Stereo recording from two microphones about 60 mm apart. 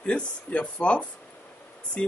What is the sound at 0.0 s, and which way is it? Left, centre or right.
Speech, left.